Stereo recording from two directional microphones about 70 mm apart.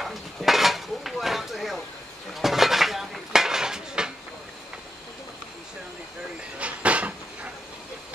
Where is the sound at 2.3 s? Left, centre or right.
Centre.